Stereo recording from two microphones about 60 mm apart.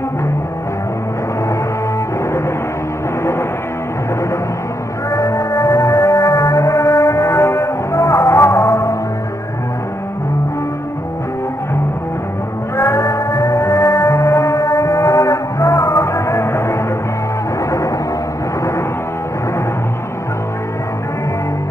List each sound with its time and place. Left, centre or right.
5.1 s music: left
12.7 s music: left
17.6 s music: left